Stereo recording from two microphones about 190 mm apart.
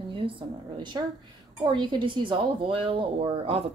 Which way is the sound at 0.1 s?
25° right (ahead or behind).